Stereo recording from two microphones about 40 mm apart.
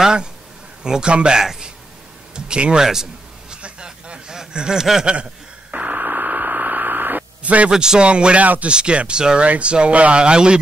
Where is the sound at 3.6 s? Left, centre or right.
Right.